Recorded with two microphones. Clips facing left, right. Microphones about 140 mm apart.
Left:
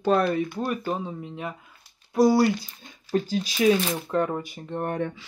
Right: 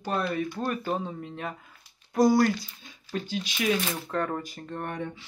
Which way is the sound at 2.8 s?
40° left (ahead or behind).